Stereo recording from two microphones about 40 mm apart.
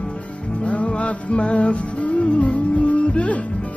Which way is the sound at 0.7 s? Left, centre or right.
Left.